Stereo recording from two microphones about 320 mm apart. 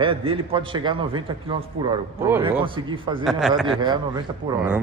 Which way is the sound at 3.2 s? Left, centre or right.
Centre.